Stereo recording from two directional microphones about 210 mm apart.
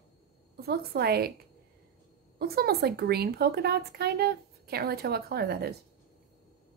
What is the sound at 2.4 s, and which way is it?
A woman's voice, 45° right (ahead or behind).